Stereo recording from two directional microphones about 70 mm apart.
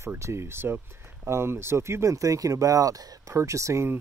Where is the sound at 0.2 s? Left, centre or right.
Right.